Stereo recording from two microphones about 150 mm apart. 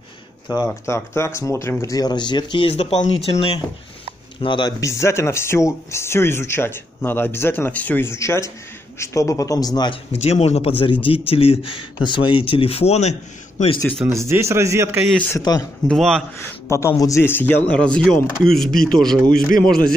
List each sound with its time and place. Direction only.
0.8 s speech: 20° left (ahead or behind)
10.1 s a man's voice: 45° left (ahead or behind)
14.0 s speech: 20° right (ahead or behind)
15.2 s speech: 20° left (ahead or behind)
15.9 s speech: centre (ahead or behind)
16.3 s speech: 20° left (ahead or behind)